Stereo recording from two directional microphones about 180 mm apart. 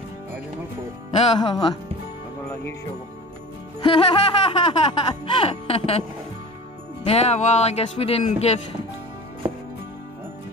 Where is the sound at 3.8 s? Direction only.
30° left (ahead or behind).